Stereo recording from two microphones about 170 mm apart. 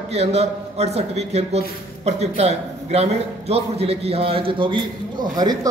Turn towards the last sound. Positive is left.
turn(degrees=-20)  # may be behind; listen again after turning